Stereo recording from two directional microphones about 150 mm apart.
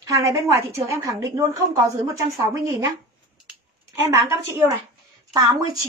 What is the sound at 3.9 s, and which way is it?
A woman's voice, 20° right (ahead or behind).